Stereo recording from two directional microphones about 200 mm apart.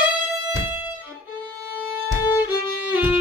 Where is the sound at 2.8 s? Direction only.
10° right (ahead or behind).